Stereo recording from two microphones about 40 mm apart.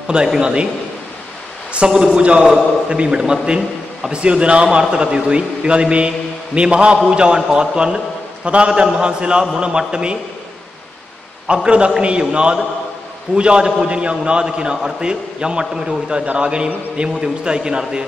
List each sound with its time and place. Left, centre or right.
0.4 s a man's voice: right
1.7 s a man's voice: right
11.4 s a man's voice: right